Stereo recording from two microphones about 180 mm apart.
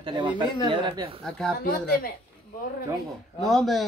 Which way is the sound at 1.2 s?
5° left (ahead or behind).